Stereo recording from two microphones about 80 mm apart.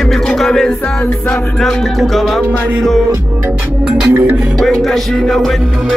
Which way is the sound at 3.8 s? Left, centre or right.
Right.